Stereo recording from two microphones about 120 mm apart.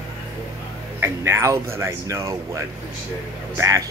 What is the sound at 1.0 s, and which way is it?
Speech, 20° right (ahead or behind).